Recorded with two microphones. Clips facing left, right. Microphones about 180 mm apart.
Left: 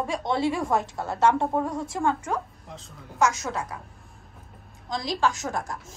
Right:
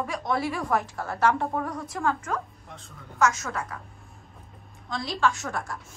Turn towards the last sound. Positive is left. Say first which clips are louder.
# left 1 dB
turn(degrees=40)  # may be behind; listen again after turning